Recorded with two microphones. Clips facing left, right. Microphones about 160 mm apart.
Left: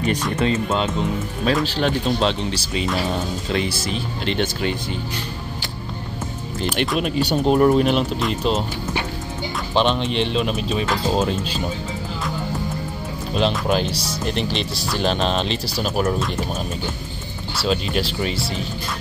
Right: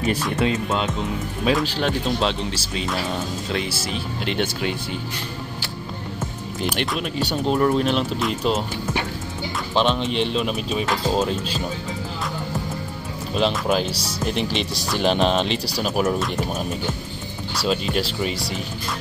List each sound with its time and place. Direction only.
0.0 s speech: 5° right (ahead or behind)
6.6 s speech: centre (ahead or behind)
7.0 s speech: 15° left (ahead or behind)
7.7 s speech: 5° left (ahead or behind)
9.8 s speech: centre (ahead or behind)
13.3 s speech: centre (ahead or behind)
15.0 s speech: 15° right (ahead or behind)
15.8 s speech: centre (ahead or behind)
17.6 s speech: centre (ahead or behind)